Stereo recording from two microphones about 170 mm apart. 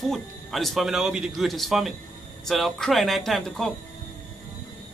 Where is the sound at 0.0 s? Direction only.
Centre (ahead or behind).